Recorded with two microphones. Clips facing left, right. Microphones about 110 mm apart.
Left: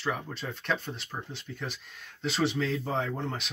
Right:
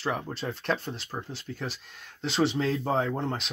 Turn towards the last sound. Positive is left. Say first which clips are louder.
# right 4 dB
turn(degrees=-35)  # may be behind; listen again after turning